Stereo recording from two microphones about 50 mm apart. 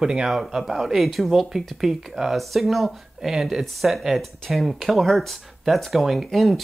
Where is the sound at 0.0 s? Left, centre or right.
Centre.